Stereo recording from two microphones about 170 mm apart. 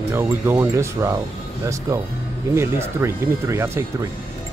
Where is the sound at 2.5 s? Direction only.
15° right (ahead or behind).